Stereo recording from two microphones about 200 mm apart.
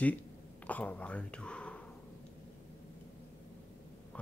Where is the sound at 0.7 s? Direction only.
5° left (ahead or behind).